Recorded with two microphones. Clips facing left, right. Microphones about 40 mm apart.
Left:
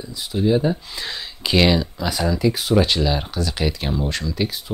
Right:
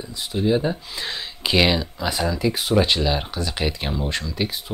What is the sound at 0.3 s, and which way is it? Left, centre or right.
Speech, centre.